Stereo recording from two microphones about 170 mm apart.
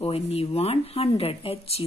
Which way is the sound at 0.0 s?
35° left (ahead or behind).